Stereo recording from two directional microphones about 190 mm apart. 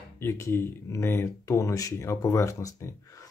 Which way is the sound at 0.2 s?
15° left (ahead or behind).